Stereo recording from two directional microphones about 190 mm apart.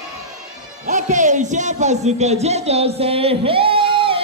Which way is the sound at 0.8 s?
40° right (ahead or behind).